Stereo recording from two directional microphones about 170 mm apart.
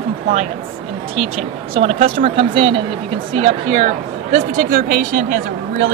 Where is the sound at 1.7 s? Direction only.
35° right (ahead or behind); by 5.3 s 55° right (ahead or behind).